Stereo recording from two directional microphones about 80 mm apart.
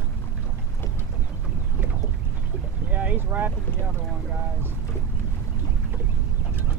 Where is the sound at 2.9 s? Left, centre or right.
Right.